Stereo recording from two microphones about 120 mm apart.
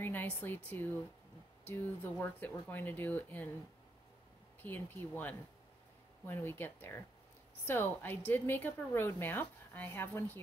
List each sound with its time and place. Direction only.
0.0 s a woman's voice: 15° left (ahead or behind)
4.6 s a woman's voice: 15° left (ahead or behind)